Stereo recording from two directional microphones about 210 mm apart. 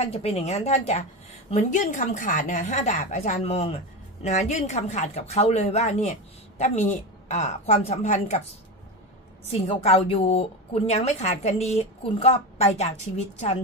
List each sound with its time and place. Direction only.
0.0 s a woman's voice: 30° left (ahead or behind)
9.5 s a woman's voice: 25° left (ahead or behind)